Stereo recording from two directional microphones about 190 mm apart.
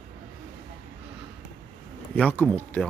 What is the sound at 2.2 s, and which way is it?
Speech, 5° left (ahead or behind).